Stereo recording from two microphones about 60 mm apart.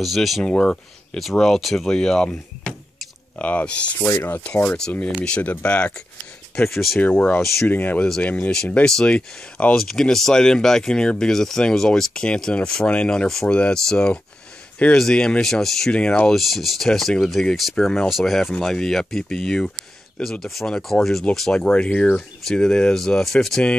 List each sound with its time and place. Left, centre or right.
0.0 s speech: centre
0.4 s speech: centre
1.9 s speech: centre
3.3 s speech: left
6.7 s speech: centre
7.0 s speech: left
8.8 s speech: centre
9.8 s speech: centre
15.9 s speech: centre
16.3 s speech: centre